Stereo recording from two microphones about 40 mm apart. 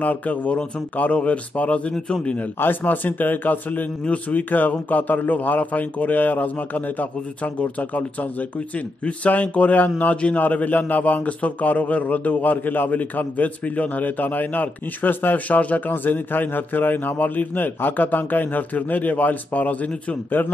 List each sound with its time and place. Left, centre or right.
0.0 s speech: left
2.6 s a man's voice: left
4.0 s a man's voice: left
15.4 s a man's voice: left